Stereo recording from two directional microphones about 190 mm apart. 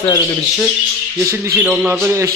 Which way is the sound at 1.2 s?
15° right (ahead or behind).